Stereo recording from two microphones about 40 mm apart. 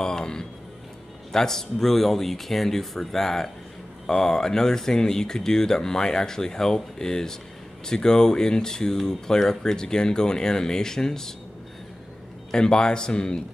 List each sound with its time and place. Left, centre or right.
0.0 s speech: centre
12.4 s a man's voice: centre